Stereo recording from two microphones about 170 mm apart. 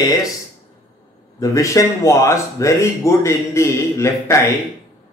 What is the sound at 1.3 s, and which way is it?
Speech, 20° left (ahead or behind).